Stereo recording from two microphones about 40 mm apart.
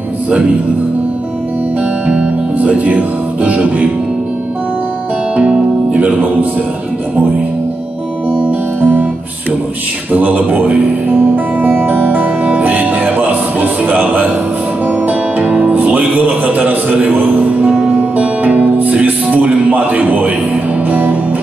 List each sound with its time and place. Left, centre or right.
2.0 s music: right
5.3 s music: right
8.5 s music: right
10.1 s speech: right
11.3 s music: right
17.1 s speech: right
17.6 s music: centre
18.1 s music: right